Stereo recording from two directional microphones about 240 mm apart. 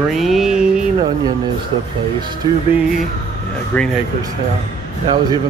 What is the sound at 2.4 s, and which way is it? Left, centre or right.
Music, centre.